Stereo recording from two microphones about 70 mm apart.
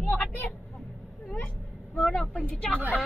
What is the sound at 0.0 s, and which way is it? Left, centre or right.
Vehicle, left.